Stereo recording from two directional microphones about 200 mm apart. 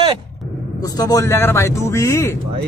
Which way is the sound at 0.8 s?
20° left (ahead or behind).